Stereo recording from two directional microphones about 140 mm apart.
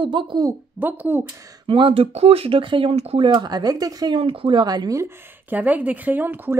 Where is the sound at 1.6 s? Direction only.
40° right (ahead or behind).